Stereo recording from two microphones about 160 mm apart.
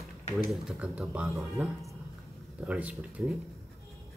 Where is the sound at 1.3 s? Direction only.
15° right (ahead or behind).